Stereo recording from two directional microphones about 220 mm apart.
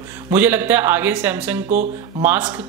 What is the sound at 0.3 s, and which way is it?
Speech, 10° right (ahead or behind).